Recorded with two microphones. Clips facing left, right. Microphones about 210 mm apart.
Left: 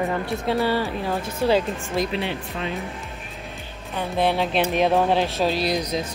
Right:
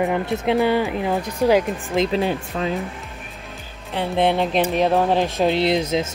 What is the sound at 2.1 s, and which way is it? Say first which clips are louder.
Speech: right 5 dB; 40° right (ahead or behind).